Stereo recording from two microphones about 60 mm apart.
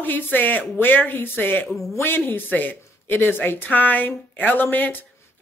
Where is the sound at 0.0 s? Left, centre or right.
Left.